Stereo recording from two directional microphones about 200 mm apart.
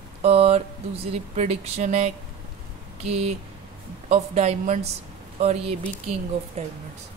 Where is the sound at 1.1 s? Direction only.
35° right (ahead or behind).